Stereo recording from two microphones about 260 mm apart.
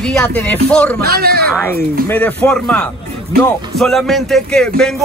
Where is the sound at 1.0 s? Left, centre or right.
Right.